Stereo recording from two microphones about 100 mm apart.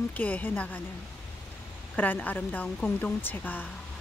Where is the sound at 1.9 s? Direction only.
15° left (ahead or behind).